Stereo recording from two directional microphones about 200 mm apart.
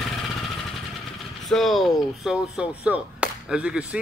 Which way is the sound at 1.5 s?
Centre (ahead or behind).